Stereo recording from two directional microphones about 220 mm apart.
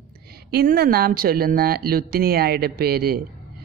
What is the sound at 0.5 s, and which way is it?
Speech, 45° right (ahead or behind).